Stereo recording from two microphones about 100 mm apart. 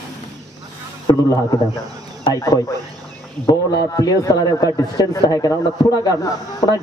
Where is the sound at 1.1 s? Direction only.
45° left (ahead or behind).